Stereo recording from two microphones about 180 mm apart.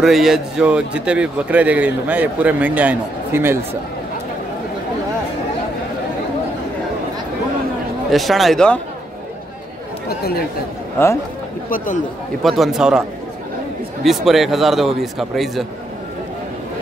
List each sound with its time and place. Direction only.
0.0 s a man's voice: centre (ahead or behind)
8.1 s a man's voice: centre (ahead or behind)
10.0 s speech: 60° left (ahead or behind)
11.7 s a man's voice: 50° left (ahead or behind)
12.4 s a man's voice: centre (ahead or behind)
14.0 s a man's voice: centre (ahead or behind)